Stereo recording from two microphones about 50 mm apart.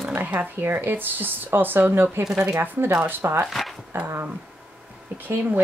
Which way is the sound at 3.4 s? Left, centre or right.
Centre.